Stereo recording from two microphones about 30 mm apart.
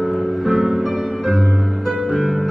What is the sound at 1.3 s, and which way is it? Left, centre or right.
Music, centre.